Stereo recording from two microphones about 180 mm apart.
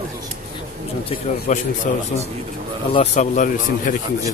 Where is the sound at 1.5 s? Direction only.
40° left (ahead or behind).